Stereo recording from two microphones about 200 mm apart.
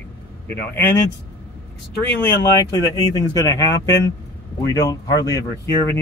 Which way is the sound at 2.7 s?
15° left (ahead or behind).